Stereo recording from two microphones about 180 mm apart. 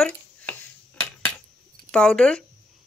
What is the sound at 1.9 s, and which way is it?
Speech, 5° left (ahead or behind).